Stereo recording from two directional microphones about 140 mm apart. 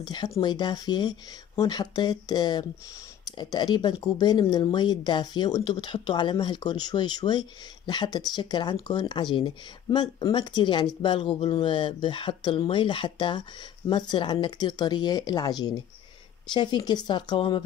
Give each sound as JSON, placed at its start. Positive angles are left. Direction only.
{"t": 0.0, "sound": "speech", "side_deg": 30}